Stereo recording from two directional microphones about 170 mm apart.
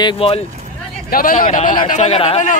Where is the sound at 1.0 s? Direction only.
55° left (ahead or behind).